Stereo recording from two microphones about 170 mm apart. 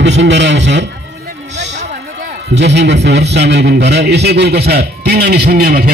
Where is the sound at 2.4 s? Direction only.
90° right.